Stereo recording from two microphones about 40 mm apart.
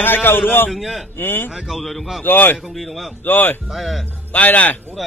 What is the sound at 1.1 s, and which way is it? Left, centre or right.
Speech, left.